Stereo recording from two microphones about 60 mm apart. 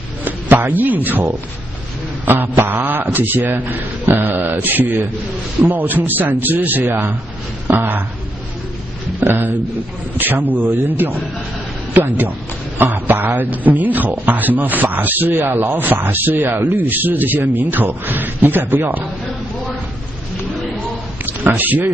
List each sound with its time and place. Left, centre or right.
0.2 s a man's voice: right
9.2 s a man's voice: right
21.3 s speech: right